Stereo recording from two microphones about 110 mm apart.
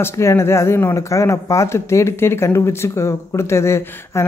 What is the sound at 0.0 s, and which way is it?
Speech, 25° left (ahead or behind).